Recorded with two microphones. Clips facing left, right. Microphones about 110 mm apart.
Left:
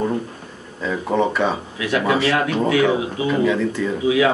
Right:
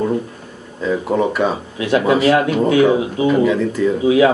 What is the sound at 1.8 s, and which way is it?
Speech, 25° right (ahead or behind).